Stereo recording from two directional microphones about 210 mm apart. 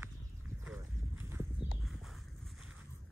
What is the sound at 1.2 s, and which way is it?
Horse, 10° right (ahead or behind).